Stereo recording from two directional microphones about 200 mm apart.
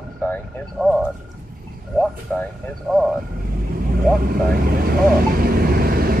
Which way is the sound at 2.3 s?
5° left (ahead or behind).